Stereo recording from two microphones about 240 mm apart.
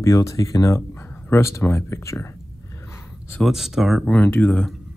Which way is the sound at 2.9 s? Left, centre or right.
Centre.